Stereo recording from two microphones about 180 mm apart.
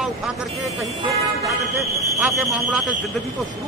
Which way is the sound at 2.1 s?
5° right (ahead or behind).